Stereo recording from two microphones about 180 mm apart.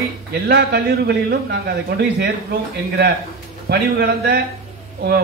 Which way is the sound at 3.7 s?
65° right (ahead or behind).